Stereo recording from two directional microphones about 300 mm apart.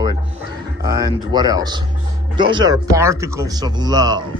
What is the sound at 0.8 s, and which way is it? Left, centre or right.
Speech, centre.